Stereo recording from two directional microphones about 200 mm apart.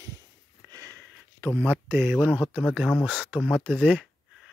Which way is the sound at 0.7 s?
15° right (ahead or behind).